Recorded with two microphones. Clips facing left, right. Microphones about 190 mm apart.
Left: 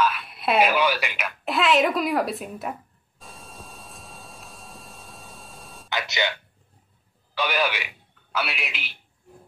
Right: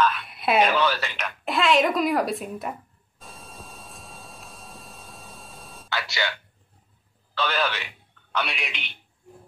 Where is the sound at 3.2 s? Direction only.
Centre (ahead or behind).